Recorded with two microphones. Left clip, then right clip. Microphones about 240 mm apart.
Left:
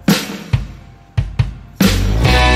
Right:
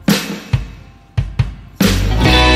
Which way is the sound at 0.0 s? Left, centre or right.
Centre.